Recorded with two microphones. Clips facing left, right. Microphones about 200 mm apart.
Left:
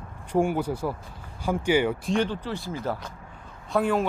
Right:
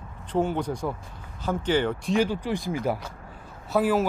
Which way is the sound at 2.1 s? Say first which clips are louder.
Right 2 dB; 10° right (ahead or behind).